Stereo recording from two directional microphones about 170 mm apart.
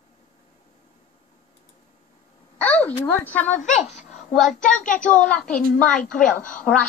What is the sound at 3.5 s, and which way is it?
Speech, 45° left (ahead or behind).